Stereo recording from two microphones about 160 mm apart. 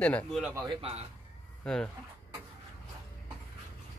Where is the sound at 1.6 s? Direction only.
5° left (ahead or behind).